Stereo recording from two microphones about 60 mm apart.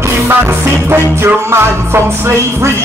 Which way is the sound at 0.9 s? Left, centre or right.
Right.